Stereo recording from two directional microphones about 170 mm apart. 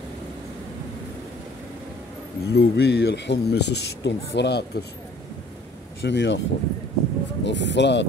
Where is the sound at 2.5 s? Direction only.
80° left.